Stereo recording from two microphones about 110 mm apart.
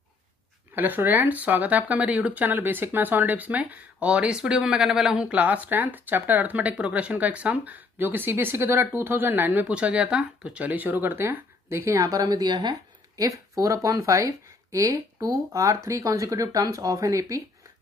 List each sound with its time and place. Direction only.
0.7 s speech: 15° right (ahead or behind)